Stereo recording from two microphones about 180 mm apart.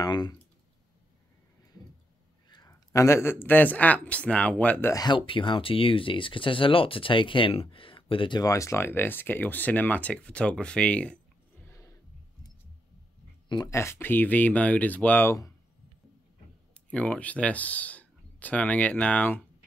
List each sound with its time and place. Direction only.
0.0 s speech: 25° left (ahead or behind)
2.5 s speech: 20° left (ahead or behind)
11.6 s a sound: 15° left (ahead or behind)
13.5 s speech: 20° left (ahead or behind)
16.7 s speech: 5° left (ahead or behind)